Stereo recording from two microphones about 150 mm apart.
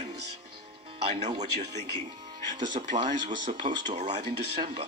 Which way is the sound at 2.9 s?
55° right (ahead or behind).